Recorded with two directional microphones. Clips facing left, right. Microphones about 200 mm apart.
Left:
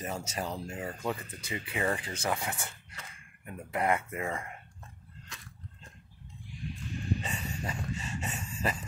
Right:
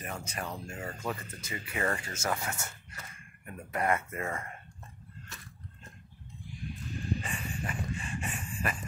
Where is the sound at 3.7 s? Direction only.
15° left (ahead or behind).